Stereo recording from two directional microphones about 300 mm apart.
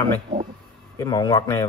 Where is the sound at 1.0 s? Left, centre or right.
Centre.